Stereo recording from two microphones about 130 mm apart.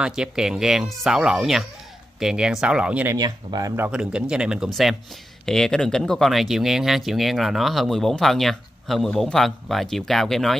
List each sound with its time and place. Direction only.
0.0 s speech: 5° right (ahead or behind)
3.2 s speech: 30° right (ahead or behind)
3.7 s speech: 15° right (ahead or behind); by 10.5 s centre (ahead or behind)